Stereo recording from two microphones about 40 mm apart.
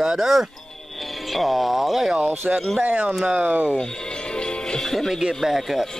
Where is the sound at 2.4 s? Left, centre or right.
Right.